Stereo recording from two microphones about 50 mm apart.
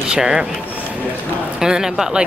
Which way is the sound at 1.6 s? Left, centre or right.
Centre.